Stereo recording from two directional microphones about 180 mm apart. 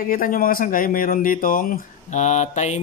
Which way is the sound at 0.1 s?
50° left (ahead or behind).